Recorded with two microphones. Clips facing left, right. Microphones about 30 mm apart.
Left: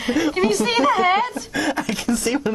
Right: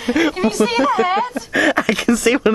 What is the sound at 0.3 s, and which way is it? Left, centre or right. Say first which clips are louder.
A woman's voice: right 2 dB; centre.